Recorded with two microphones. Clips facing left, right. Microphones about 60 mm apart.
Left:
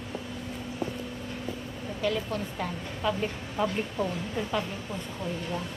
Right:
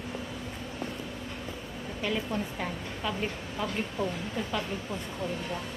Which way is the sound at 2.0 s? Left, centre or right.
Centre.